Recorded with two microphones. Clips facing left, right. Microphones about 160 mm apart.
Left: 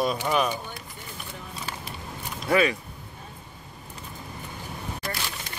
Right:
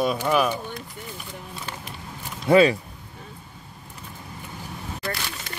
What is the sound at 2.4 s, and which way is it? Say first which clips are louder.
Speech: right 6 dB; 25° right (ahead or behind).